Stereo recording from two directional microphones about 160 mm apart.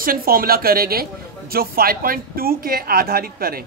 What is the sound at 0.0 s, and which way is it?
A woman's voice, 65° right (ahead or behind).